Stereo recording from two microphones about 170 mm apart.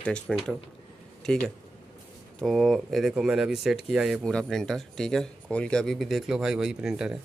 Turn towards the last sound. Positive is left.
turn(degrees=-5)  # may be behind; listen again after turning